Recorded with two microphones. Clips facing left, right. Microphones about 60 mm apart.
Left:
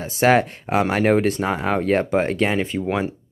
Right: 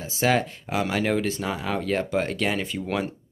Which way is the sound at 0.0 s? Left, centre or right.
Left.